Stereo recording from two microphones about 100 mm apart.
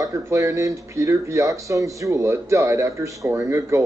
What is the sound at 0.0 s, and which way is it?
Speech, 35° right (ahead or behind).